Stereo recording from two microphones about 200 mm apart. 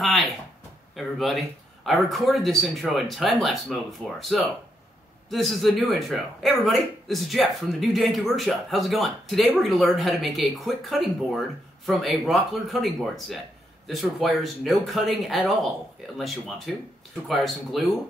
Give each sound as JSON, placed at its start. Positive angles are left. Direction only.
{"t": 0.0, "sound": "speech", "side_deg": 0}